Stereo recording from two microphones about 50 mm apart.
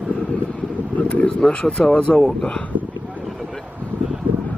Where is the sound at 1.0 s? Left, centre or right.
Left.